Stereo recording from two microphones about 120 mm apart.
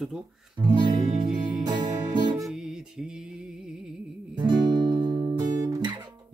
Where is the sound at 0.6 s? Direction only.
40° right (ahead or behind).